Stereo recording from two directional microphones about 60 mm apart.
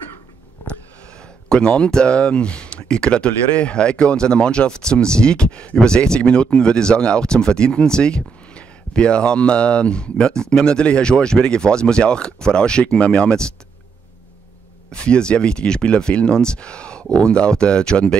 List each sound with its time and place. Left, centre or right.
1.5 s speech: centre
14.9 s speech: centre